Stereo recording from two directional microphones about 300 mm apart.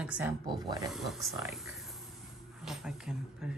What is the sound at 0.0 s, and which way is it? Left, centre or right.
Speech, centre.